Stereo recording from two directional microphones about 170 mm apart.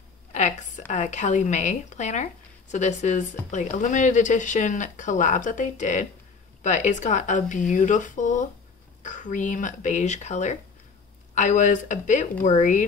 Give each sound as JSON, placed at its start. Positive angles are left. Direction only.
{"t": 0.3, "sound": "a woman's voice", "side_deg": 45}